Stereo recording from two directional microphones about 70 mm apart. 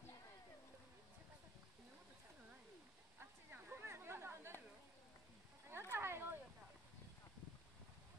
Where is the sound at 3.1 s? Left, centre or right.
Right.